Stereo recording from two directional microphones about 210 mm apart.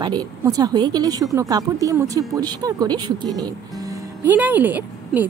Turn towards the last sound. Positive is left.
turn(degrees=-10)  # may be behind; listen again after turning